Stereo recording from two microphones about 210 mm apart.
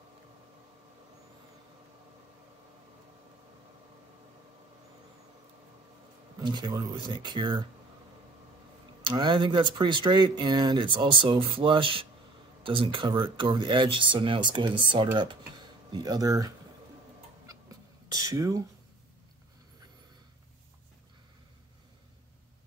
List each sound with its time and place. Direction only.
6.4 s speech: 20° right (ahead or behind)
9.0 s speech: 20° right (ahead or behind)
18.0 s speech: 15° right (ahead or behind)